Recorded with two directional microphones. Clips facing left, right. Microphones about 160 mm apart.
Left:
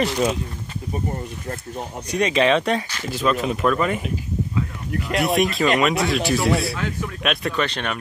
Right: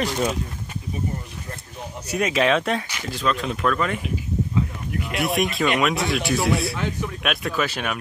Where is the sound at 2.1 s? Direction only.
5° right (ahead or behind).